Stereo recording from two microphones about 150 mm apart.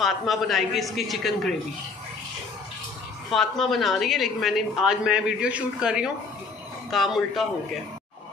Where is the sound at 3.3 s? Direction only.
Centre (ahead or behind).